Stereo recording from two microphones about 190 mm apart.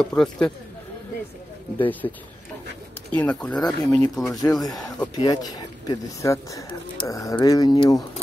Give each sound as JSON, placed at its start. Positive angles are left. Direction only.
{"t": 0.0, "sound": "speech", "side_deg": 5}
{"t": 1.8, "sound": "speech", "side_deg": 10}
{"t": 3.2, "sound": "speech", "side_deg": 5}
{"t": 4.4, "sound": "speech", "side_deg": 20}